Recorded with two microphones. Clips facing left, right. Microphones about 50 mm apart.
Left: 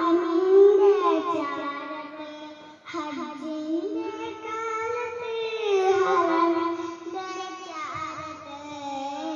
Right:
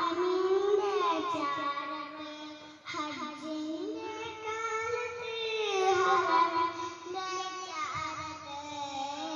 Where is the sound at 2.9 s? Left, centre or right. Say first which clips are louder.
Left 5 dB; centre.